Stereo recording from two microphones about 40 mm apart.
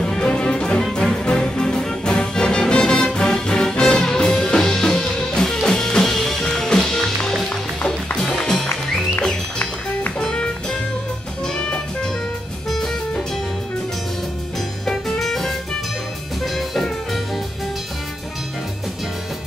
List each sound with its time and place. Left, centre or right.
0.2 s music: left
8.3 s music: centre
10.1 s music: left
12.6 s music: centre
14.9 s music: centre
16.5 s music: centre